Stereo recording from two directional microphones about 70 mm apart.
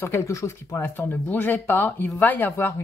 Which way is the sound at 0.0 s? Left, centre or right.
Left.